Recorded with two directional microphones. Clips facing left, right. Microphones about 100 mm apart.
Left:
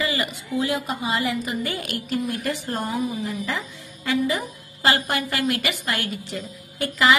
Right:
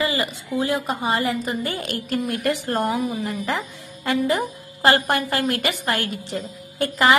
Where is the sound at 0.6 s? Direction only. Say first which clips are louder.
Right 2 dB; 45° right (ahead or behind).